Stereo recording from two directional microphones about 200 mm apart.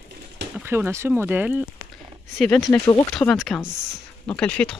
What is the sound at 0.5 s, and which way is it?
Speech, 10° right (ahead or behind).